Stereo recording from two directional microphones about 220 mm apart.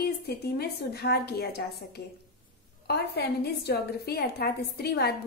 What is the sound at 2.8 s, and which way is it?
A woman's voice, 45° left (ahead or behind).